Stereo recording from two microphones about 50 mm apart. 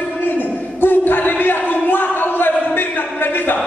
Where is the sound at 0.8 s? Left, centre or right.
Left.